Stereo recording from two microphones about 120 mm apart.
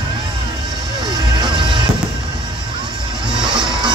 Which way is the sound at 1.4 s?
40° right (ahead or behind).